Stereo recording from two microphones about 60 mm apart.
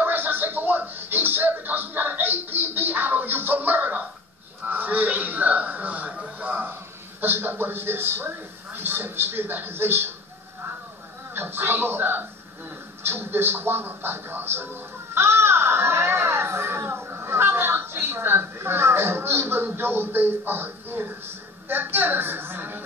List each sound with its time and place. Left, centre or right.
0.0 s music: right
4.6 s a sound: right
6.6 s a man's voice: right
11.3 s a man's voice: right